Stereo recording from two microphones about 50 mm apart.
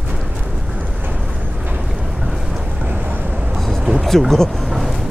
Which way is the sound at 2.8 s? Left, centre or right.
Right.